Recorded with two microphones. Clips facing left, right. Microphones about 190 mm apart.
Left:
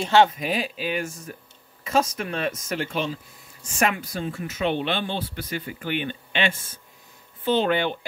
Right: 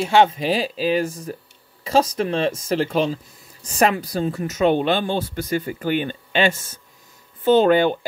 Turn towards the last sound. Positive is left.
turn(degrees=-45)  # may be behind; listen again after turning